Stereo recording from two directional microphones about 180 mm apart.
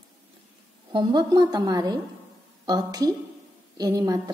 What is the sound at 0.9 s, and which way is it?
A woman's voice, 25° right (ahead or behind).